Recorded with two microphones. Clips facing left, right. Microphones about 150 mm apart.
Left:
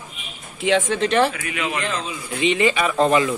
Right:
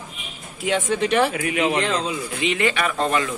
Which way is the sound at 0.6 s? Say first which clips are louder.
Left 4 dB; 90° left.